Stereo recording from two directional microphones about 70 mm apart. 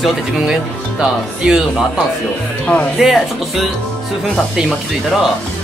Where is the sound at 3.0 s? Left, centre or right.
Centre.